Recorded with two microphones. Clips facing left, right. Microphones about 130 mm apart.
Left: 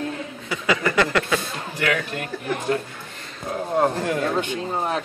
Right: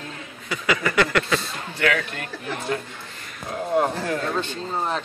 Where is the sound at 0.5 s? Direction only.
25° left (ahead or behind).